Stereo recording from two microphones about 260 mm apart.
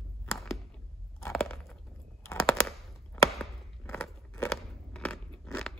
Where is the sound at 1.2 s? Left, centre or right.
Centre.